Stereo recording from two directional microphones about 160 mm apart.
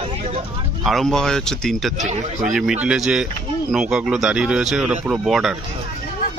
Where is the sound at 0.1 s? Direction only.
35° right (ahead or behind).